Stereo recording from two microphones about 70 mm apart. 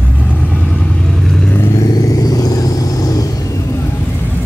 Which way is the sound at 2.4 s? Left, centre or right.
Left.